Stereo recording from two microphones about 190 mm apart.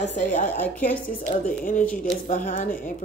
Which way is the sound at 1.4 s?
45° left (ahead or behind).